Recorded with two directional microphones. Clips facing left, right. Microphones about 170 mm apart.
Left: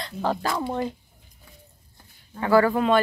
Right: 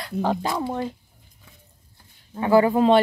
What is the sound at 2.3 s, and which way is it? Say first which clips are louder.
Speech: right 2 dB; 20° right (ahead or behind).